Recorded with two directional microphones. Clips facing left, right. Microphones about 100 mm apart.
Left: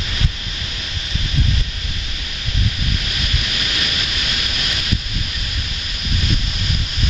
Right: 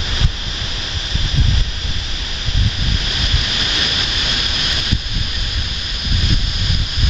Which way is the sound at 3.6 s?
30° right (ahead or behind).